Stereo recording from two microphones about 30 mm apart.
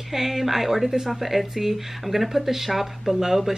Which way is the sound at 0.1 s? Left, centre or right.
Centre.